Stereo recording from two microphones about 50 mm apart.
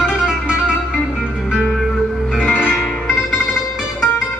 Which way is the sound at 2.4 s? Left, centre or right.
Left.